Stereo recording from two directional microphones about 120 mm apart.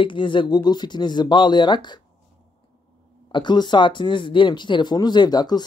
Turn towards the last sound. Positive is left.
turn(degrees=35)  # may be behind; listen again after turning